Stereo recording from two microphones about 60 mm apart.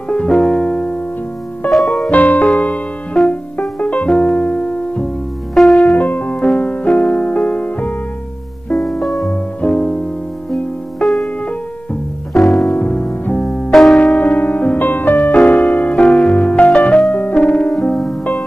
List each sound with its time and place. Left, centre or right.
0.1 s music: centre
1.7 s music: centre
2.0 s music: left
5.9 s music: left
9.0 s music: centre
12.7 s music: left
13.4 s music: centre
13.9 s music: left
14.8 s music: left; by 18.1 s centre